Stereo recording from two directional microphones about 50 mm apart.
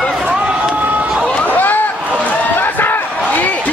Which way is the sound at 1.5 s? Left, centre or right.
Left.